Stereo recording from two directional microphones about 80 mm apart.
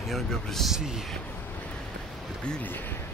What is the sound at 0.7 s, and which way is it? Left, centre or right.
Speech, centre.